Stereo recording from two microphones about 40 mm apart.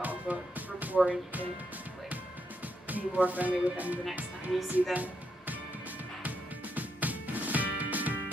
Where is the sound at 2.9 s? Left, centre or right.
Right.